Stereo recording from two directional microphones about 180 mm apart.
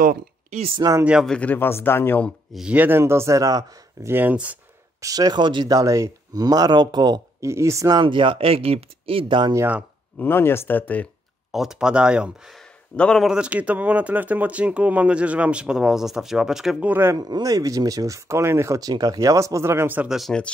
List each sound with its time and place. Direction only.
0.0 s speech: 55° right (ahead or behind)
0.7 s speech: 20° right (ahead or behind)
1.0 s speech: centre (ahead or behind)
2.5 s speech: 5° right (ahead or behind)
5.0 s speech: 20° right (ahead or behind)
10.1 s speech: 10° left (ahead or behind)
11.5 s speech: centre (ahead or behind)